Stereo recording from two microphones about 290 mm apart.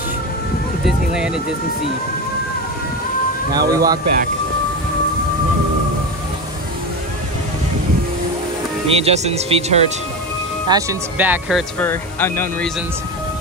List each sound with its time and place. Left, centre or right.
0.8 s speech: centre
3.5 s speech: centre
8.8 s speech: right
10.7 s speech: centre